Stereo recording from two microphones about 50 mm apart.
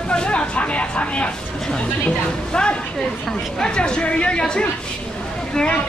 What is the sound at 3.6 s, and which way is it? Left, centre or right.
A woman's voice, centre.